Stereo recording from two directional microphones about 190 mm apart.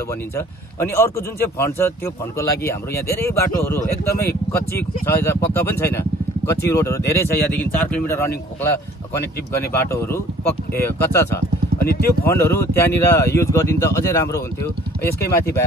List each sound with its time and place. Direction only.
0.7 s speech: 15° left (ahead or behind)
9.7 s speech: 10° left (ahead or behind)
11.8 s speech: 50° left (ahead or behind)
12.3 s speech: 15° left (ahead or behind)